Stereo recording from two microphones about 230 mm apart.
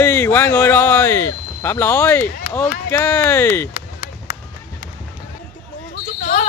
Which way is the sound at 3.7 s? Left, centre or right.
Left.